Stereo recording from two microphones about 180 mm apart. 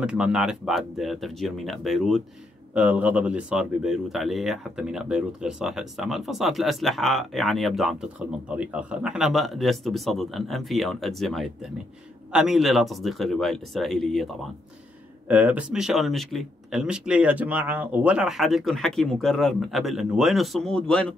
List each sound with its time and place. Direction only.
0.0 s speech: 5° right (ahead or behind)